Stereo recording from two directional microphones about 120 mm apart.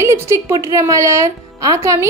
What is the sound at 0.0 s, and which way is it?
A woman's voice, 25° right (ahead or behind).